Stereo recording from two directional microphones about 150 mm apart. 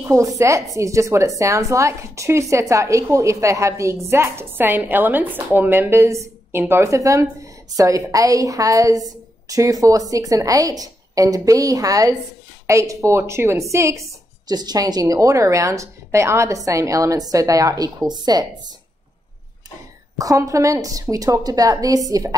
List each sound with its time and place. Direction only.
0.0 s speech: 20° right (ahead or behind)
20.2 s speech: 20° right (ahead or behind)